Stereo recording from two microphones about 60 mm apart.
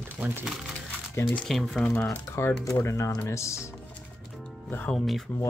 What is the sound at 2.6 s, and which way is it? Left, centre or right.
Speech, left.